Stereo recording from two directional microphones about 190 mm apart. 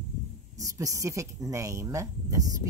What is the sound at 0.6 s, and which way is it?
Speech, 15° right (ahead or behind).